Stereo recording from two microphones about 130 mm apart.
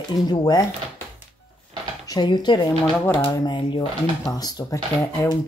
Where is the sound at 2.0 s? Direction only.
35° left (ahead or behind).